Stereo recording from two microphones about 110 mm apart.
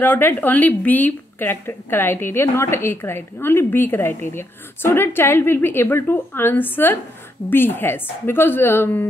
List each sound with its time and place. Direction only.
0.0 s a woman's voice: 15° left (ahead or behind)